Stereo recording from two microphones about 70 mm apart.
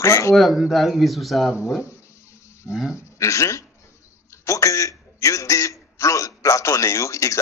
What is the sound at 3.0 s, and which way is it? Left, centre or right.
A man's voice, left.